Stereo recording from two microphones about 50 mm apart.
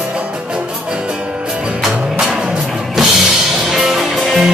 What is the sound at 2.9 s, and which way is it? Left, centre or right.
Music, centre.